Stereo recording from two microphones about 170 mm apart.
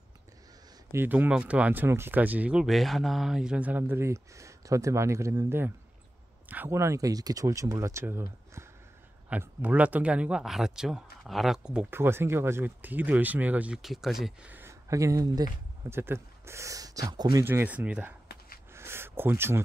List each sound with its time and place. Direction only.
0.9 s speech: 10° right (ahead or behind)
17.5 s speech: 10° right (ahead or behind)
18.7 s a sound: 15° right (ahead or behind)